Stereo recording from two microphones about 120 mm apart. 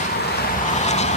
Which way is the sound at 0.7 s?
70° left (ahead or behind).